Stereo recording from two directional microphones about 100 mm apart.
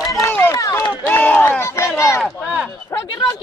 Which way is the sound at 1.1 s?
15° left (ahead or behind).